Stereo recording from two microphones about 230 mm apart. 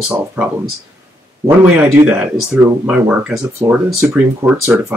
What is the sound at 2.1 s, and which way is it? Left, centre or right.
Speech, centre.